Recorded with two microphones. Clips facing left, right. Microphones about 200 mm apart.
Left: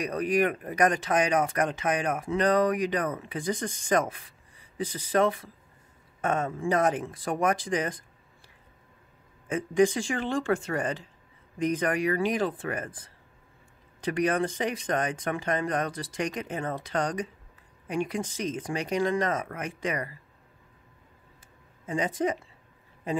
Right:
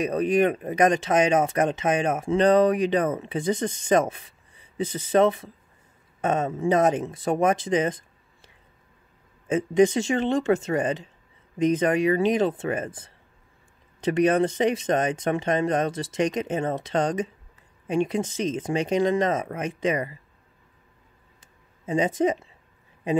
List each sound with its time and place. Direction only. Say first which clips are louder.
0.0 s speech: right 4 dB; 25° right (ahead or behind)
9.5 s speech: right 4 dB; 25° right (ahead or behind)
21.8 s speech: right 5 dB; 20° right (ahead or behind)